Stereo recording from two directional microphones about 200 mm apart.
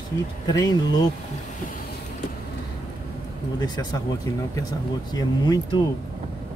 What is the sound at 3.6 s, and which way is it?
Speech, 20° left (ahead or behind).